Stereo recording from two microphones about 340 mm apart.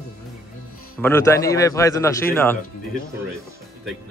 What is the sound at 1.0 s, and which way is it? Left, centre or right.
A man's voice, centre.